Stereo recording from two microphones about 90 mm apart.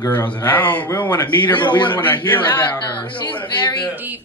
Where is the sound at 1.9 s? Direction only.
20° left (ahead or behind).